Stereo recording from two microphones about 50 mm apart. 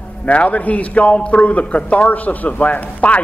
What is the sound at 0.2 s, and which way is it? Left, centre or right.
A man's voice, left.